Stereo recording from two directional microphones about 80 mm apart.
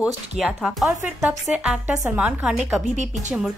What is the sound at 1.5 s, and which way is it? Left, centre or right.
A woman's voice, centre.